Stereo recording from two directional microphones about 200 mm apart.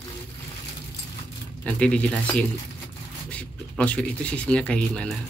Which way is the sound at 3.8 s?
5° left (ahead or behind).